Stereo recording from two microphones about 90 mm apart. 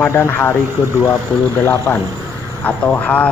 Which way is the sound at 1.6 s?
20° left (ahead or behind).